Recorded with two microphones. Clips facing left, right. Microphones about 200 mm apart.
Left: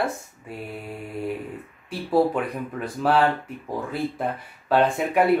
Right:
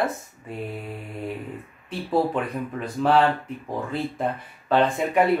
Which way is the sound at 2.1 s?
5° left (ahead or behind).